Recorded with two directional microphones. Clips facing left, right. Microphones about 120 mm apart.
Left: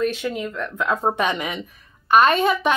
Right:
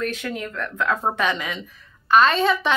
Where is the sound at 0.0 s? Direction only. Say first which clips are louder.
Left 4 dB; 20° left (ahead or behind).